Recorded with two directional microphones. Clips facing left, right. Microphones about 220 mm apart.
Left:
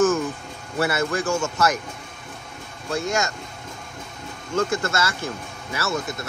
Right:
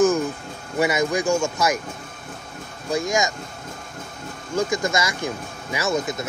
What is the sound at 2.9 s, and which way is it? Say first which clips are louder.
Speech: right 2 dB; 10° right (ahead or behind).